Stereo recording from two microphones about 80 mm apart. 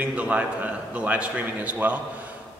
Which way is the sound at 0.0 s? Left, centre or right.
Centre.